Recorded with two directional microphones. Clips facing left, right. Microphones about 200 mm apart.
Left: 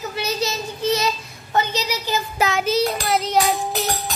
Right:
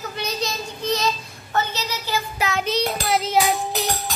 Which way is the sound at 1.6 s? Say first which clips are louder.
Left 3 dB; 15° left (ahead or behind).